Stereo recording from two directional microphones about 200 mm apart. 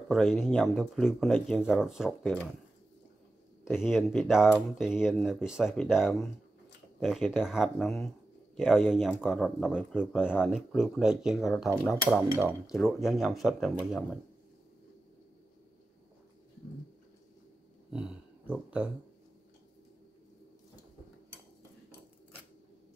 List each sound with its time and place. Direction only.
0.1 s speech: centre (ahead or behind)
3.8 s speech: centre (ahead or behind)
17.9 s a sound: 5° right (ahead or behind)